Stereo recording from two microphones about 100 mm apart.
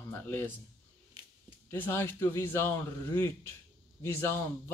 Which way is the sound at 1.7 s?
25° left (ahead or behind).